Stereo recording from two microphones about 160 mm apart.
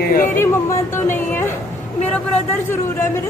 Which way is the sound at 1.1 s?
15° left (ahead or behind).